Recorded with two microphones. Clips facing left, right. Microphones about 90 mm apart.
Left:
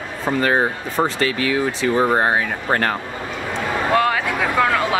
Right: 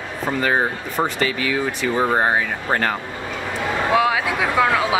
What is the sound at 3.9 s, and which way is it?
Speech, 5° right (ahead or behind).